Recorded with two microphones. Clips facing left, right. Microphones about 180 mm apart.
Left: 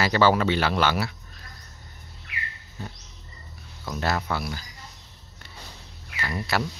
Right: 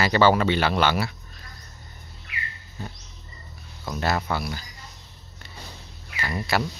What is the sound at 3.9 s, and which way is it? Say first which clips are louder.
Speech: right 1 dB; 5° right (ahead or behind).